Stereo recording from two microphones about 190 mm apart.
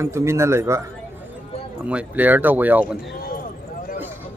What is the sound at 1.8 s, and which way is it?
A man's voice, 5° right (ahead or behind).